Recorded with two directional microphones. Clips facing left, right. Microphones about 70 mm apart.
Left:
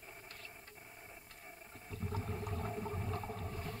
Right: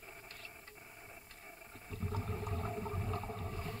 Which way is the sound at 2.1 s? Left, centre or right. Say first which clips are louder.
Right 1 dB; right.